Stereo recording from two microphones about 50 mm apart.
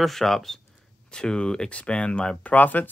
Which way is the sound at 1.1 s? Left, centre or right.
Centre.